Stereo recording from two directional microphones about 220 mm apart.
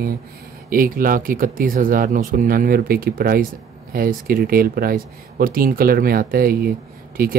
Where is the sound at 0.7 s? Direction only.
40° right (ahead or behind).